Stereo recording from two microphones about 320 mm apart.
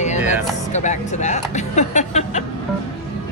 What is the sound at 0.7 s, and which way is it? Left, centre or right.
Speech, left.